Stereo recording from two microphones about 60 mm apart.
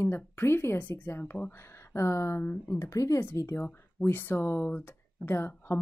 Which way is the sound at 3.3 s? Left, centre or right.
Left.